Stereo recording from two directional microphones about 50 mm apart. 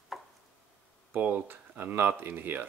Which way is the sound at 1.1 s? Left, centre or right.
Right.